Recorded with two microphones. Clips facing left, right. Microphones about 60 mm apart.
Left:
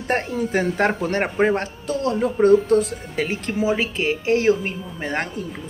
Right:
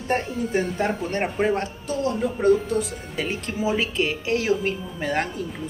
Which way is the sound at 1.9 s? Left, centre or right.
Left.